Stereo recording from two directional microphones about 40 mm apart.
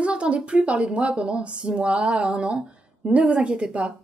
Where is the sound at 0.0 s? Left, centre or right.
Right.